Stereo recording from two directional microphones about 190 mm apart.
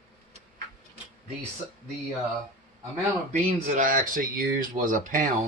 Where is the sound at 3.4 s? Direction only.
40° right (ahead or behind).